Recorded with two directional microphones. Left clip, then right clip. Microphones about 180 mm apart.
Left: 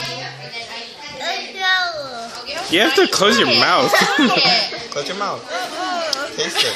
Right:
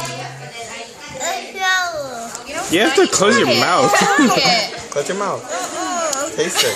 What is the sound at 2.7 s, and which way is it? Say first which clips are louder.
Speech: even; 5° left (ahead or behind).